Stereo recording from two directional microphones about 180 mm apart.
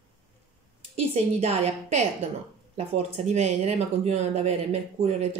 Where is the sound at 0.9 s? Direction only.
35° right (ahead or behind).